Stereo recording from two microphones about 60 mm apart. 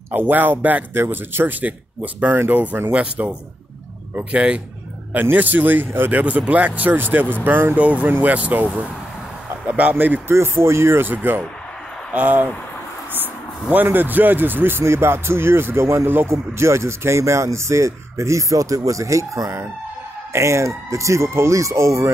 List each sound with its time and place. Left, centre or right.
0.1 s speech: right
0.9 s speech: right
2.5 s speech: right
5.1 s speech: right
7.7 s speech: right
10.2 s speech: right
11.1 s speech: right